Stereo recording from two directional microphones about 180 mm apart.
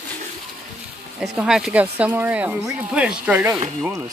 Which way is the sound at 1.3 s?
5° right (ahead or behind).